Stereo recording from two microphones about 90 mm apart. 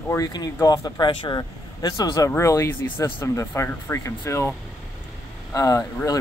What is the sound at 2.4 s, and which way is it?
Speech, 35° left (ahead or behind).